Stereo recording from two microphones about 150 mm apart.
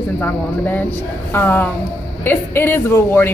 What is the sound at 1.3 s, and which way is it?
A man's voice, 15° left (ahead or behind).